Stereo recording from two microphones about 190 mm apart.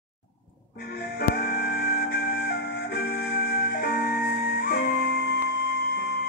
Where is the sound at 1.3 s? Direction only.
50° left (ahead or behind).